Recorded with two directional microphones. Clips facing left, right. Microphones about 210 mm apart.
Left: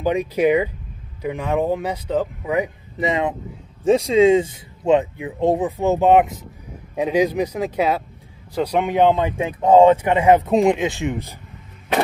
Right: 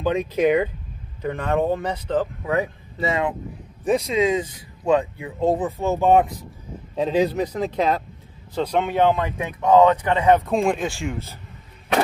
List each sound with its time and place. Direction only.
0.0 s speech: 10° left (ahead or behind)